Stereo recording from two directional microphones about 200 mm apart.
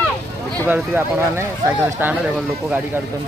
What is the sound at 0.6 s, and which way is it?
Speech, 10° right (ahead or behind).